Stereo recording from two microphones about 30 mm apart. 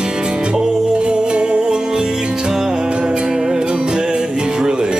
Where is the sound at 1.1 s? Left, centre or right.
Right.